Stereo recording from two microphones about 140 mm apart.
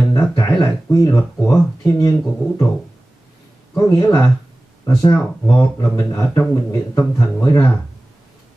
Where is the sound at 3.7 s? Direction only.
25° left (ahead or behind).